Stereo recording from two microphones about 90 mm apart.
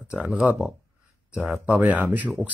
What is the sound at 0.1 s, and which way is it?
Speech, 15° right (ahead or behind).